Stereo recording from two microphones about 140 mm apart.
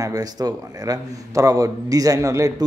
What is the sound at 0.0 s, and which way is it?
A man's voice, 25° right (ahead or behind).